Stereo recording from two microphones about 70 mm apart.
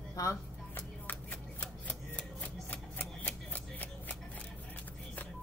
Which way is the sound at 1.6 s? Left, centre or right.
Left.